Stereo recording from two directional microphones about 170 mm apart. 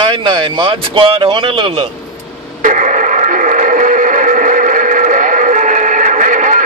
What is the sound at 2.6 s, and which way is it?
Radio, 45° right (ahead or behind).